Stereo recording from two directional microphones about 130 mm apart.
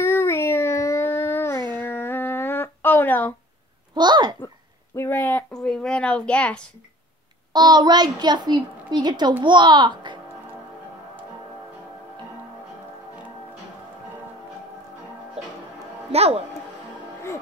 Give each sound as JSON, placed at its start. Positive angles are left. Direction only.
{"t": 0.0, "sound": "a sound", "side_deg": 20}
{"t": 1.8, "sound": "humming", "side_deg": 15}
{"t": 3.9, "sound": "a child's voice", "side_deg": -35}
{"t": 4.9, "sound": "a child's voice", "side_deg": 15}
{"t": 7.5, "sound": "a child's voice", "side_deg": -35}
{"t": 16.1, "sound": "speech", "side_deg": -50}